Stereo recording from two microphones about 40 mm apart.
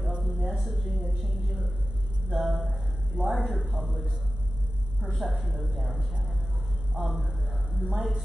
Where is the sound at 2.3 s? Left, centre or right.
Centre.